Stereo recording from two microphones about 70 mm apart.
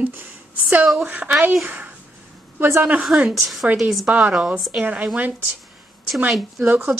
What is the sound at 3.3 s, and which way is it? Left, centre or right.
Speech, centre.